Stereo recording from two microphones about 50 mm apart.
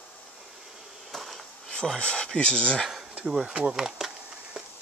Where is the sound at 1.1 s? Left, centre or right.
Centre.